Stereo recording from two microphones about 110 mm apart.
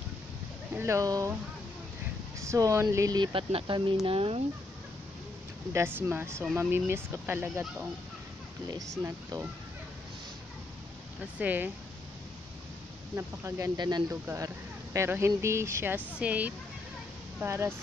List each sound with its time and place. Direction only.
0.7 s speech: 25° right (ahead or behind)
2.4 s speech: 25° right (ahead or behind)
3.2 s speech: 50° right (ahead or behind)
5.7 s speech: 20° right (ahead or behind)
8.6 s speech: 35° right (ahead or behind)
11.3 s speech: 15° right (ahead or behind)
13.1 s speech: 25° right (ahead or behind)
13.7 s speech: 40° right (ahead or behind)
14.2 s speech: 25° right (ahead or behind)